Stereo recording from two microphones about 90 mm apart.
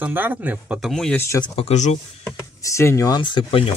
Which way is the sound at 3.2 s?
65° left (ahead or behind).